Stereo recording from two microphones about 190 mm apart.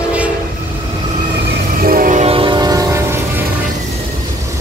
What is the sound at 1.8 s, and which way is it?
Train, 50° right (ahead or behind).